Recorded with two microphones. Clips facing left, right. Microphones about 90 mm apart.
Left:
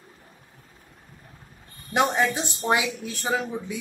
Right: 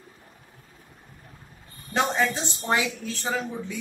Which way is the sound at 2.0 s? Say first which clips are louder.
Left 2 dB; 15° left (ahead or behind).